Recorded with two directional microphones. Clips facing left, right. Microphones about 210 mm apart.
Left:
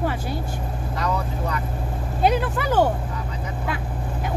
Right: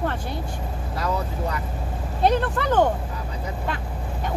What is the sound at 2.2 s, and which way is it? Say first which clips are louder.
Speech: even; 5° left (ahead or behind).